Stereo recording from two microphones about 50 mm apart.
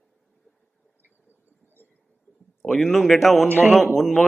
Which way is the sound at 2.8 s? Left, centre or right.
Centre.